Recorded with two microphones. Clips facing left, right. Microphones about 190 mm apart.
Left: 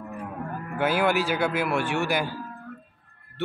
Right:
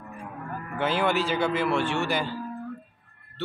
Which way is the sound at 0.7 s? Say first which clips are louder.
Left 2 dB; 10° left (ahead or behind).